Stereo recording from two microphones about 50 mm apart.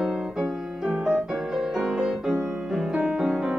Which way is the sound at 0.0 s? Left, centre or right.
Centre.